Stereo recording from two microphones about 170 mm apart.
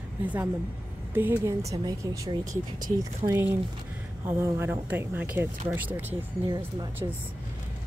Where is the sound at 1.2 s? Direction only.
15° right (ahead or behind).